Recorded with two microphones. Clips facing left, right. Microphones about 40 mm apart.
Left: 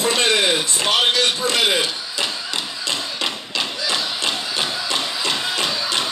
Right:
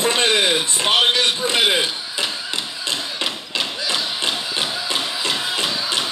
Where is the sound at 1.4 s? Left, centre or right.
Centre.